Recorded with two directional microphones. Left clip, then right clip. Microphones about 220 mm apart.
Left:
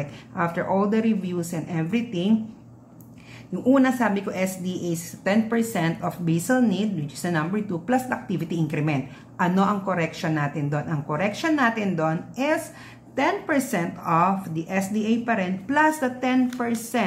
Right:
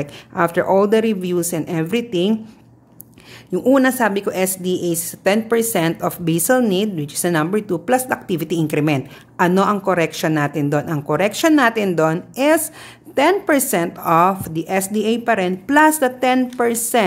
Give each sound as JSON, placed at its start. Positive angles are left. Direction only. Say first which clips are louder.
{"t": 0.0, "sound": "a woman's voice", "louder": "right 8 dB", "side_deg": -50}
{"t": 3.5, "sound": "a woman's voice", "louder": "right 6 dB", "side_deg": -50}